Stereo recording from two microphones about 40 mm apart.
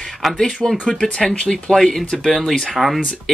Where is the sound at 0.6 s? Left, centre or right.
Right.